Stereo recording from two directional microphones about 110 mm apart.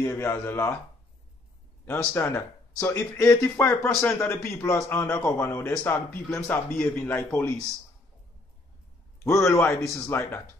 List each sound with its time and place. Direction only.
0.0 s a man's voice: 25° left (ahead or behind)
2.1 s a man's voice: 20° left (ahead or behind)
9.2 s a man's voice: 25° left (ahead or behind)